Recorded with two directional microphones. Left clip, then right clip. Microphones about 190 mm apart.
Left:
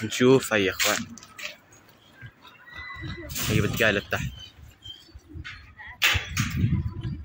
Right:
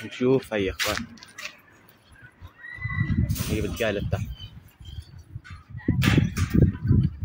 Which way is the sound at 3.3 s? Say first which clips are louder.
Left 3 dB; centre (ahead or behind).